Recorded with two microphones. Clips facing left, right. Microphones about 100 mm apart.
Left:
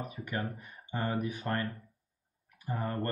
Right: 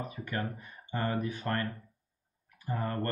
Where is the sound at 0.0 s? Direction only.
15° left (ahead or behind).